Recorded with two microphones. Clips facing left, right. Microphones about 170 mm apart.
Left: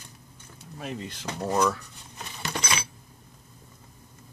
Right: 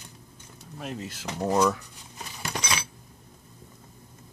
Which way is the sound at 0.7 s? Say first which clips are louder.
Even; centre (ahead or behind).